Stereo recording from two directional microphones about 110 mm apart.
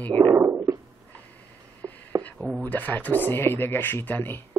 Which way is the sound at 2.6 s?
15° left (ahead or behind).